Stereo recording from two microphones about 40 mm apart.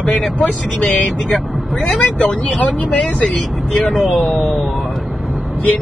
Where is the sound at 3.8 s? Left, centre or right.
Centre.